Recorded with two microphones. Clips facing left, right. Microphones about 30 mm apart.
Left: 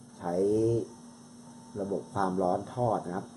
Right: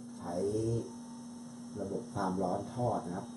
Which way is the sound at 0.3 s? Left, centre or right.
Left.